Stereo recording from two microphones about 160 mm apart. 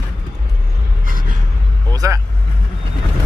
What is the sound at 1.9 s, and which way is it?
Vehicle, 25° right (ahead or behind).